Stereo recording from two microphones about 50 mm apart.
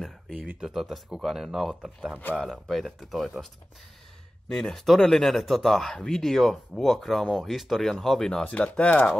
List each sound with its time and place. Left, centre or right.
0.7 s speech: centre
4.5 s speech: centre
8.3 s speech: left